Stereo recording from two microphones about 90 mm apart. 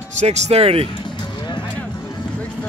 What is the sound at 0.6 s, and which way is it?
Speech, 90° right.